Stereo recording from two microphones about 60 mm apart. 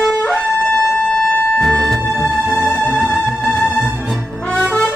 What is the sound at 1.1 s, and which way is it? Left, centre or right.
Music, centre.